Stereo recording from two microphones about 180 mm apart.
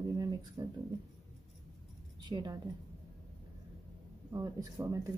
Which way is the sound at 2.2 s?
25° right (ahead or behind).